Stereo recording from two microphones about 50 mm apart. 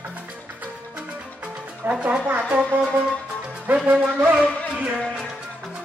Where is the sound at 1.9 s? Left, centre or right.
Right.